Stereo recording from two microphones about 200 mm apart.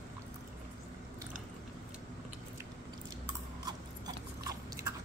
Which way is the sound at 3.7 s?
20° right (ahead or behind).